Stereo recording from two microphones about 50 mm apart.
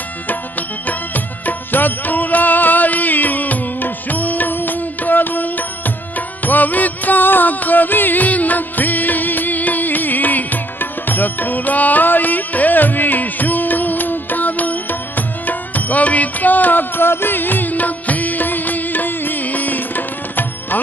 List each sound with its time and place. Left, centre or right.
0.3 s music: left